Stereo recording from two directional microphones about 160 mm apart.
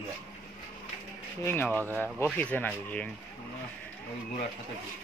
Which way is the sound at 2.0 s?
10° left (ahead or behind).